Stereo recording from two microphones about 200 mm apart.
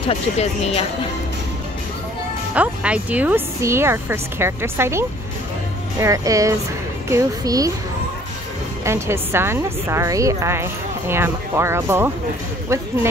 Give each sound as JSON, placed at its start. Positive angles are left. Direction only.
{"t": 0.1, "sound": "speech", "side_deg": 30}
{"t": 2.5, "sound": "a woman's voice", "side_deg": -5}
{"t": 8.8, "sound": "a woman's voice", "side_deg": -15}